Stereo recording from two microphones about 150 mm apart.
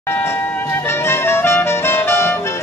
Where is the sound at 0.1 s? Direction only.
15° left (ahead or behind).